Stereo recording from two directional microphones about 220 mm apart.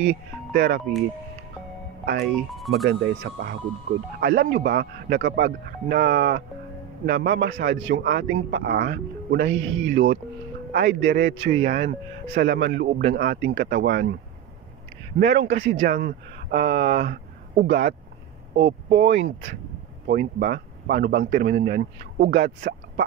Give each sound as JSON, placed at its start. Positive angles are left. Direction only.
{"t": 0.5, "sound": "speech", "side_deg": -45}
{"t": 2.5, "sound": "speech", "side_deg": 0}
{"t": 2.9, "sound": "a man's voice", "side_deg": -50}
{"t": 11.1, "sound": "speech", "side_deg": -40}
{"t": 12.4, "sound": "a man's voice", "side_deg": -50}
{"t": 15.1, "sound": "speech", "side_deg": -50}
{"t": 15.8, "sound": "a man's voice", "side_deg": -40}